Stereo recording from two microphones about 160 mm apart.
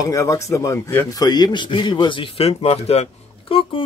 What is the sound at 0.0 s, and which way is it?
Speech, 20° left (ahead or behind).